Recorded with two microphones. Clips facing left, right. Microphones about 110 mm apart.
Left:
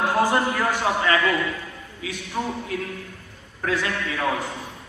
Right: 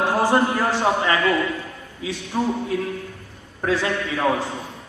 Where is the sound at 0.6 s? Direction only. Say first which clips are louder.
Right 3 dB; 30° right (ahead or behind).